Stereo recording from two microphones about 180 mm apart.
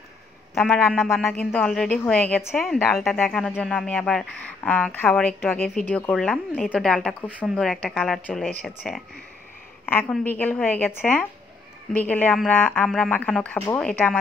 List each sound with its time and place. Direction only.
0.6 s a woman's voice: 5° left (ahead or behind)